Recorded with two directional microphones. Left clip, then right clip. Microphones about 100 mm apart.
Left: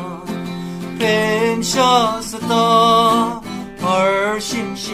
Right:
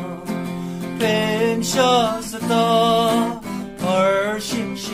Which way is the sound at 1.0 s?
30° right (ahead or behind).